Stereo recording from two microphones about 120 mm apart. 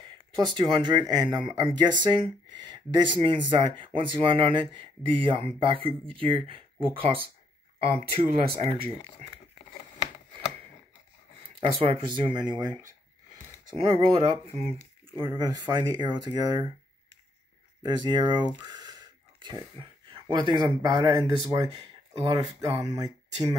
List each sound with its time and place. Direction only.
0.4 s speech: 40° right (ahead or behind)
11.6 s speech: 50° right (ahead or behind)
14.4 s speech: 70° right (ahead or behind)
15.0 s speech: 40° right (ahead or behind)
17.8 s speech: 40° right (ahead or behind)